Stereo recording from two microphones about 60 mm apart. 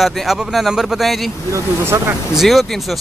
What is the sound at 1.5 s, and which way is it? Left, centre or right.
Speech, right.